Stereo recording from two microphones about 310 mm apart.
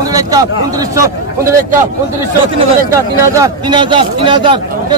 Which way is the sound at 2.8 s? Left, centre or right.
Centre.